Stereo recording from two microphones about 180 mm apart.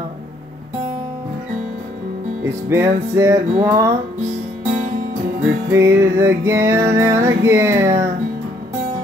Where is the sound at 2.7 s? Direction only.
15° right (ahead or behind).